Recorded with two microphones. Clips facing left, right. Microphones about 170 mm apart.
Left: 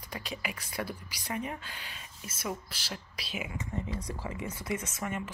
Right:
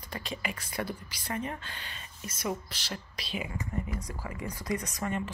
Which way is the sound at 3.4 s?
20° left (ahead or behind).